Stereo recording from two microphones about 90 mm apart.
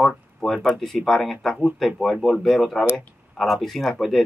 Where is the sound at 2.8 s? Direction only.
30° left (ahead or behind).